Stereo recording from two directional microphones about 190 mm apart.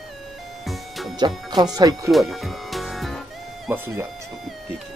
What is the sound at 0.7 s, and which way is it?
Music, centre (ahead or behind).